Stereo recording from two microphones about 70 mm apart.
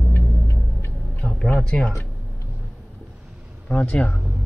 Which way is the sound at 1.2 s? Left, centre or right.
Centre.